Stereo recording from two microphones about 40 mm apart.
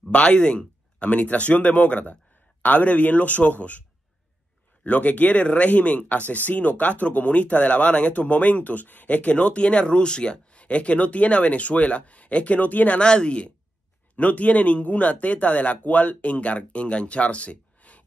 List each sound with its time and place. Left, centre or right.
0.1 s a man's voice: left
4.8 s speech: left
13.0 s speech: left
14.1 s speech: left